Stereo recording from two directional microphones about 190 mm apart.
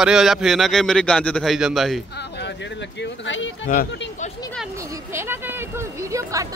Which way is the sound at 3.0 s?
85° left.